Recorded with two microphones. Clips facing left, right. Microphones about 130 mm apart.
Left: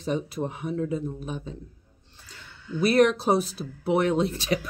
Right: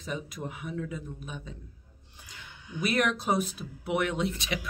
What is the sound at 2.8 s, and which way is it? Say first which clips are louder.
Speech: left 8 dB; 35° left (ahead or behind).